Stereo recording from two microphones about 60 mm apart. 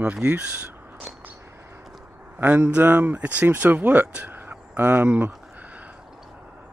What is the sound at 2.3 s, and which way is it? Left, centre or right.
Speech, right.